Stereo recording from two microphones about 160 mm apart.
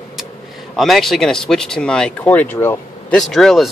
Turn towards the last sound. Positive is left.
turn(degrees=0)  # may be behind; listen again after turning